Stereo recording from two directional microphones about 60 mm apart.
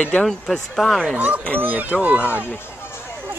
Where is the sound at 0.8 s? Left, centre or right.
Centre.